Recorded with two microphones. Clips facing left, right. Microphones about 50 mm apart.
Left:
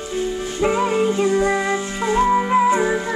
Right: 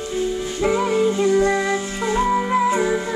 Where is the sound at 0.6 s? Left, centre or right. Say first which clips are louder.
Even; left.